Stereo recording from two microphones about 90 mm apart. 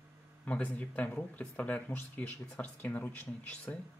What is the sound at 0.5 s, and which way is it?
Speech, 15° left (ahead or behind).